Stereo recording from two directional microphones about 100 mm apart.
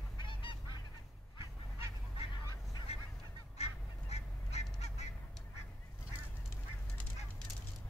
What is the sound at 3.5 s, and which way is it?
Goose, 90° left.